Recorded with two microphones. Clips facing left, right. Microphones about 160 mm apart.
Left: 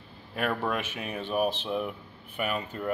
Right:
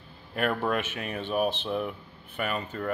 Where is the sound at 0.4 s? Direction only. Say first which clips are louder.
Right 2 dB; centre (ahead or behind).